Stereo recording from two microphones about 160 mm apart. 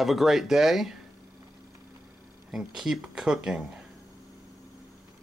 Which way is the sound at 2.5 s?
5° right (ahead or behind).